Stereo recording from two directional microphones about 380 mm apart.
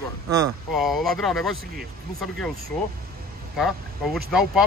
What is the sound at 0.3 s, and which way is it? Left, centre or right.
Speech, centre.